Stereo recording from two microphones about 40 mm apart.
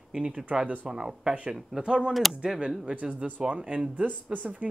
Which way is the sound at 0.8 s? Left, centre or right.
Centre.